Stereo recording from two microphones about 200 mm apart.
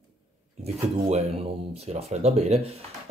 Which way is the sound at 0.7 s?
30° right (ahead or behind).